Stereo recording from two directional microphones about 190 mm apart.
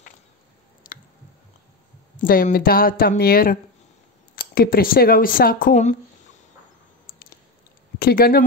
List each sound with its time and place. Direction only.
0.8 s squish: 45° left (ahead or behind)
2.1 s speech: 45° left (ahead or behind)
7.1 s biting: 50° left (ahead or behind)
8.0 s speech: 50° left (ahead or behind)